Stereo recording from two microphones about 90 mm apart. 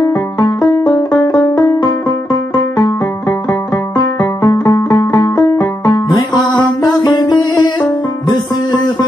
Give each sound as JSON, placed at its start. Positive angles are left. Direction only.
{"t": 0.1, "sound": "music", "side_deg": 40}
{"t": 0.9, "sound": "banjo", "side_deg": 50}
{"t": 1.8, "sound": "music", "side_deg": 50}